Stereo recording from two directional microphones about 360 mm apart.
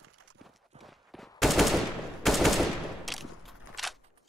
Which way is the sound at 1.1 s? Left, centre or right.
Centre.